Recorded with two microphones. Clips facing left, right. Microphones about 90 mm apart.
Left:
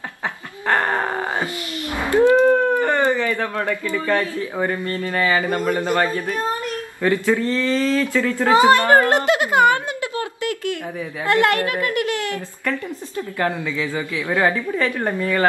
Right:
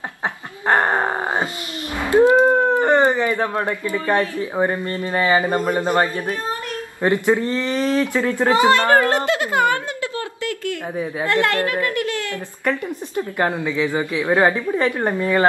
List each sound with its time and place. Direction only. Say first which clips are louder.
0.7 s groan: right 2 dB; 20° right (ahead or behind)
2.0 s a woman's voice: right 1 dB; 20° right (ahead or behind)
8.5 s a child's voice: left 2 dB; 20° left (ahead or behind)
11.0 s a woman's voice: left 1 dB; 25° right (ahead or behind)